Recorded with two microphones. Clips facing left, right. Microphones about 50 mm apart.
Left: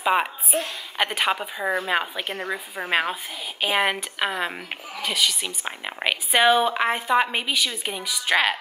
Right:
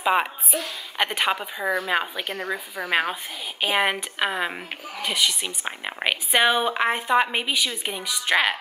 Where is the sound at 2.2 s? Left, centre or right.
Left.